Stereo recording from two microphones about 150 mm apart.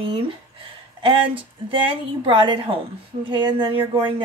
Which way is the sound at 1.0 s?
35° right (ahead or behind).